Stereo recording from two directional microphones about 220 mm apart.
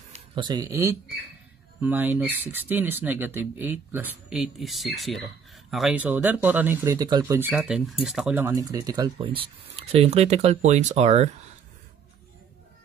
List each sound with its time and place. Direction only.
0.3 s speech: 20° right (ahead or behind)